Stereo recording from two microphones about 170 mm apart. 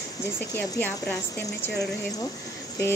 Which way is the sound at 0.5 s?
10° left (ahead or behind).